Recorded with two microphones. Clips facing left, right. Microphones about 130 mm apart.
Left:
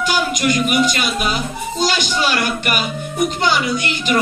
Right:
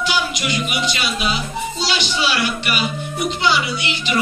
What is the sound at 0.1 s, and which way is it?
Speech, 45° left (ahead or behind).